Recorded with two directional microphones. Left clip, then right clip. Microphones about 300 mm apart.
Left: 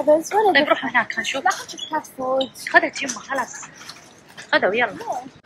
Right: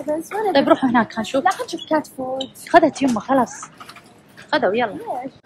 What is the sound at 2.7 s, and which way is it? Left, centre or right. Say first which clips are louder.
Speech: right 4 dB; centre.